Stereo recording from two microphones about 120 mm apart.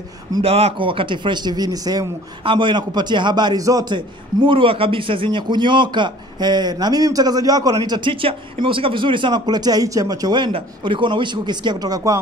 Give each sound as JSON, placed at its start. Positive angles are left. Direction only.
{"t": 0.4, "sound": "a man's voice", "side_deg": -60}